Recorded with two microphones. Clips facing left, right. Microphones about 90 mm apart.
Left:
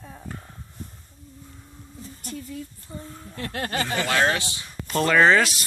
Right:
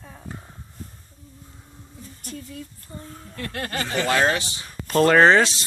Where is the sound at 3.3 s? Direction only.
30° left (ahead or behind).